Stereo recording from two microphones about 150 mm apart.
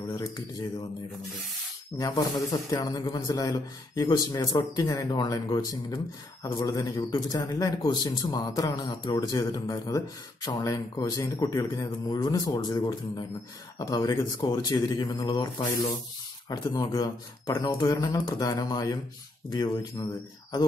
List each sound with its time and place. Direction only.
2.0 s a man's voice: 25° left (ahead or behind)